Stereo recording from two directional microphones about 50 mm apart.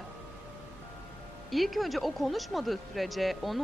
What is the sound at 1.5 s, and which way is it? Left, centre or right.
Speech, centre.